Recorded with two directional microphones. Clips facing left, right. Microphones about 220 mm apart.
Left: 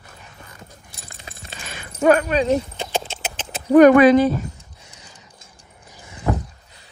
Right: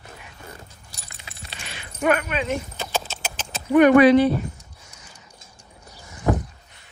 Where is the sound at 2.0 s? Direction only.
35° left (ahead or behind).